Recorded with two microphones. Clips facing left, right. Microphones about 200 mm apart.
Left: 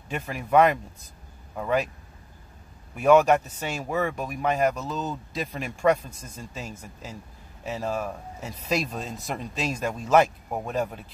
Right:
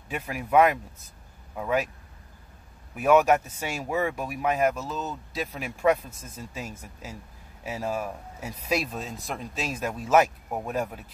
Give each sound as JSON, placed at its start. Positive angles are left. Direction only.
{"t": 0.1, "sound": "speech", "side_deg": -5}
{"t": 3.0, "sound": "speech", "side_deg": -5}